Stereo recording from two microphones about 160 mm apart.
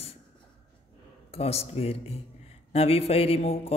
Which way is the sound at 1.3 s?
40° left (ahead or behind).